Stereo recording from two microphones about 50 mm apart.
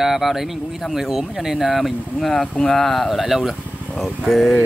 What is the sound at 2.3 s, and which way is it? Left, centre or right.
Speech, left.